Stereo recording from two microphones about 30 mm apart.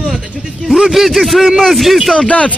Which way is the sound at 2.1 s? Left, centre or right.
Left.